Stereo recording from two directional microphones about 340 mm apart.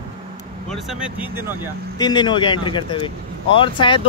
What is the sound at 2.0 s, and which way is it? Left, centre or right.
Speech, centre.